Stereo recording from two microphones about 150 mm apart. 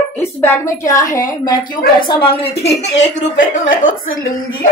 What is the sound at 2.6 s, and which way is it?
A woman's voice, 50° left (ahead or behind).